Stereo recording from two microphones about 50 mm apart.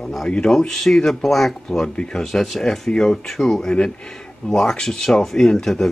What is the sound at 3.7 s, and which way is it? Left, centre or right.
Speech, centre.